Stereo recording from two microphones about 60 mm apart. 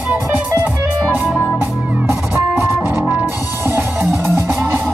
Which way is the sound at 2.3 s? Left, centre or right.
Right.